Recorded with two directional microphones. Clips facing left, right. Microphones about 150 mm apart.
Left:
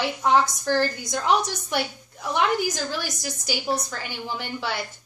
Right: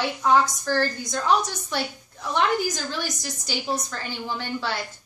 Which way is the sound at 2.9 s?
10° left (ahead or behind).